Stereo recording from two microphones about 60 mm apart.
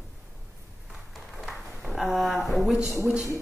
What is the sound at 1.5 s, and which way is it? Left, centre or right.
Speech, centre.